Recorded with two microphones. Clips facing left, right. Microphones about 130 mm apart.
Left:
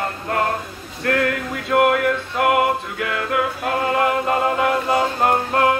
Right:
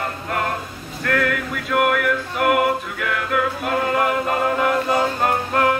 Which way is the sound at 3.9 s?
25° left (ahead or behind).